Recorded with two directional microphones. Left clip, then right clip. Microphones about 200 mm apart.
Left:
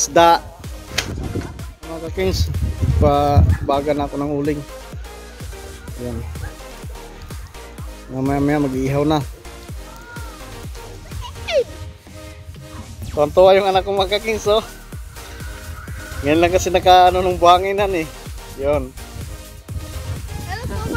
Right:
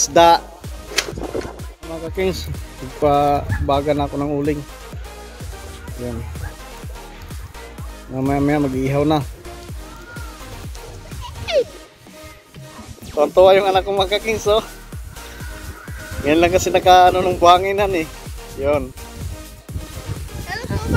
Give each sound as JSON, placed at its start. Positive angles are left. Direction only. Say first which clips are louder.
{"t": 0.0, "sound": "speech", "louder": "right 1 dB", "side_deg": 0}
{"t": 1.0, "sound": "music", "louder": "right 2 dB", "side_deg": 55}
{"t": 1.9, "sound": "speech", "louder": "even", "side_deg": 5}
{"t": 8.2, "sound": "speech", "louder": "even", "side_deg": 0}
{"t": 11.2, "sound": "music", "louder": "even", "side_deg": 0}
{"t": 13.1, "sound": "speech", "louder": "even", "side_deg": 0}
{"t": 16.3, "sound": "speech", "louder": "even", "side_deg": 0}
{"t": 20.5, "sound": "music", "louder": "right 2 dB", "side_deg": 10}